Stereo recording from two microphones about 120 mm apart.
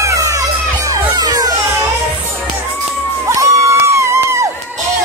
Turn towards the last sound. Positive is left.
turn(degrees=-25)  # may be behind; listen again after turning